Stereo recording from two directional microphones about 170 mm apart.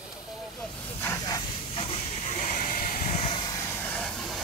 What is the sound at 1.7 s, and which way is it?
Hiss, 35° left (ahead or behind).